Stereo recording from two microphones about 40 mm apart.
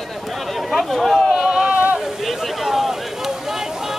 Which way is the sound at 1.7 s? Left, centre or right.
Right.